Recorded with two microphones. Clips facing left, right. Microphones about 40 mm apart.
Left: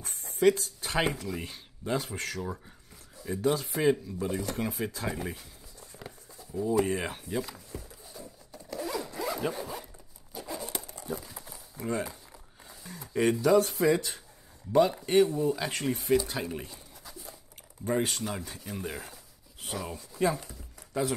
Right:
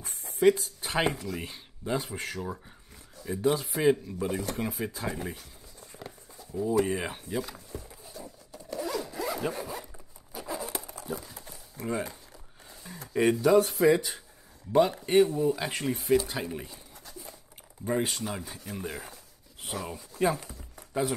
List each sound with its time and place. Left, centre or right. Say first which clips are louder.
0.2 s speech: right 1 dB; centre
3.6 s speech: right 1 dB; centre
4.5 s speech: even; centre
6.5 s speech: right 1 dB; centre
7.7 s zipper: right 1 dB; centre
10.3 s a sound: right 2 dB; centre
11.8 s speech: even; centre
12.6 s a sound: even; centre
13.1 s speech: right 1 dB; centre
20.4 s chopping: right 2 dB; centre